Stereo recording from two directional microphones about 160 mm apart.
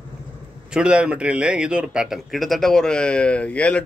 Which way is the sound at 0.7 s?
5° right (ahead or behind).